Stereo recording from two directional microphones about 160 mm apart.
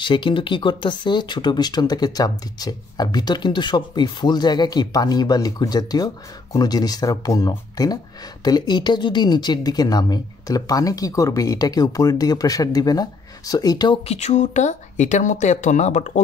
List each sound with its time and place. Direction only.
0.0 s speech: 30° left (ahead or behind)
14.0 s speech: 45° left (ahead or behind)